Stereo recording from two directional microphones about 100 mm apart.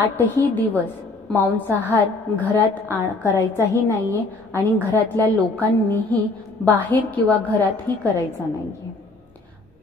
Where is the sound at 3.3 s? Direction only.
30° right (ahead or behind).